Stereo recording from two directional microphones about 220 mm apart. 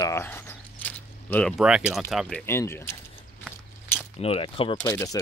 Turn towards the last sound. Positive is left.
turn(degrees=15)  # may be behind; listen again after turning